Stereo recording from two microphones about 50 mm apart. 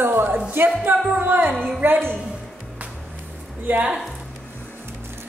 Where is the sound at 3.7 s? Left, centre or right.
Right.